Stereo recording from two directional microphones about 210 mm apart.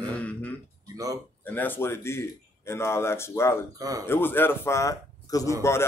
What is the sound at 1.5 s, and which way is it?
A man's voice, 10° left (ahead or behind).